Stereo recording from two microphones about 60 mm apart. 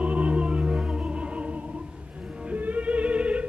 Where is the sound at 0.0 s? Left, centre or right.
Right.